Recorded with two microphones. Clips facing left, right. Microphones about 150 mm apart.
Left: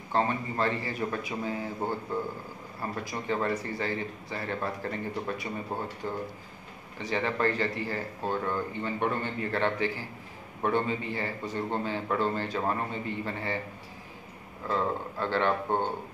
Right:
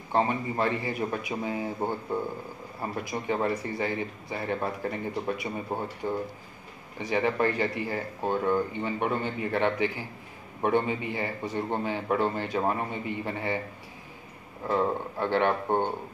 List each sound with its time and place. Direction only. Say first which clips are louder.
0.1 s speech: right 2 dB; 15° right (ahead or behind)
7.0 s speech: right 3 dB; 15° right (ahead or behind)
14.7 s speech: right 3 dB; 15° right (ahead or behind)